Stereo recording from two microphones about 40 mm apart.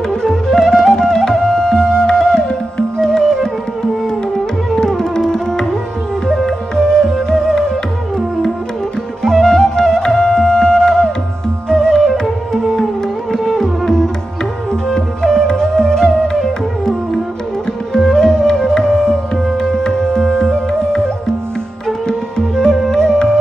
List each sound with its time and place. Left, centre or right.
0.1 s music: centre
4.7 s tabla: centre
6.2 s music: centre
9.2 s music: centre
14.7 s flute: centre
17.9 s music: centre
19.3 s music: centre
19.7 s music: centre
22.8 s music: centre